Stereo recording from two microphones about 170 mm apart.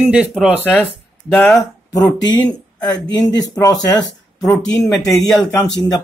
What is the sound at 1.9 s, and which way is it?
Speech, 25° left (ahead or behind).